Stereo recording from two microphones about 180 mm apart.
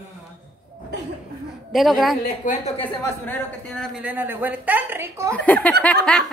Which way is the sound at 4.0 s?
10° right (ahead or behind).